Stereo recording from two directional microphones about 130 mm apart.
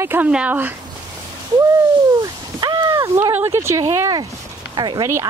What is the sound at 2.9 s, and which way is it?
Speech, 20° right (ahead or behind).